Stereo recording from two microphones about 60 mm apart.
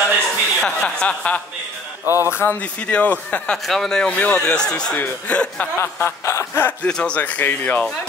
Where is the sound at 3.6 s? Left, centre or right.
Centre; by 4.6 s left.